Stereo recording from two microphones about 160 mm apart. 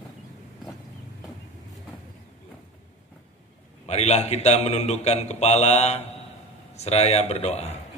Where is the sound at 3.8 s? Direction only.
45° left (ahead or behind).